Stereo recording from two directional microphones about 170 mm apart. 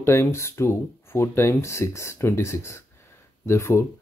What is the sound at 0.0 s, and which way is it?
Speech, 15° left (ahead or behind).